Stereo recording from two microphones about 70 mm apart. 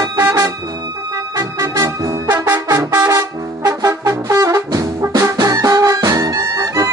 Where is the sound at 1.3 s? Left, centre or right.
Right.